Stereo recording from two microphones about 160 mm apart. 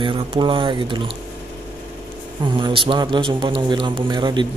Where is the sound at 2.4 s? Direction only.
30° right (ahead or behind).